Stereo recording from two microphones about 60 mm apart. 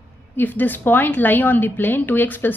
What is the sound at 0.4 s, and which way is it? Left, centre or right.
A woman's voice, left.